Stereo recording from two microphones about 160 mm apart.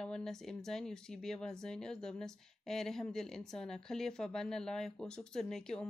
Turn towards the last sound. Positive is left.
turn(degrees=5)  # may be behind; listen again after turning